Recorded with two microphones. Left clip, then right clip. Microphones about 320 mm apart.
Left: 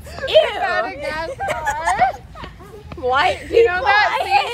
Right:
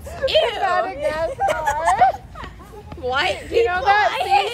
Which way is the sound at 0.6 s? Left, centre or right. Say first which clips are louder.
Right 1 dB; right.